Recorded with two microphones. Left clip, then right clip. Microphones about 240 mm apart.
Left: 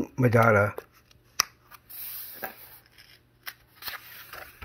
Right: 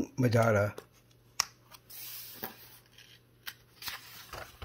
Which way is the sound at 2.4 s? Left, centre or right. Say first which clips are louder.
Left 6 dB; right.